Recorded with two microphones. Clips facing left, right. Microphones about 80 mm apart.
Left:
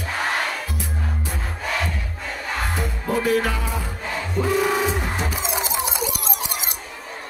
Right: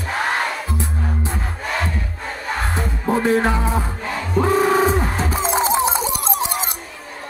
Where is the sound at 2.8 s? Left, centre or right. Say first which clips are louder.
Right 6 dB; right.